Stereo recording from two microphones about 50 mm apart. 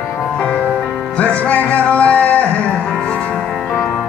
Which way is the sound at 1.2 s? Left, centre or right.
Left.